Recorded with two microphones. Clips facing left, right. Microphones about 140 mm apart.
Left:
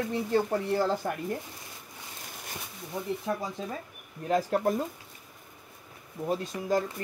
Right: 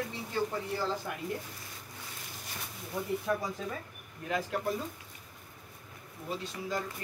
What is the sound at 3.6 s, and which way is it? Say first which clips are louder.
Speech: left 2 dB; 25° left (ahead or behind).